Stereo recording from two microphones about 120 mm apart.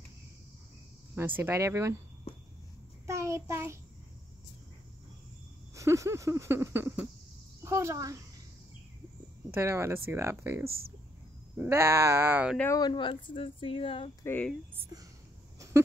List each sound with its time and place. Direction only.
1.1 s speech: 20° right (ahead or behind)
3.1 s child singing: 25° right (ahead or behind)
5.8 s speech: 25° right (ahead or behind)
9.5 s speech: 20° right (ahead or behind)
12.7 s speech: 40° left (ahead or behind)
14.2 s speech: 15° left (ahead or behind)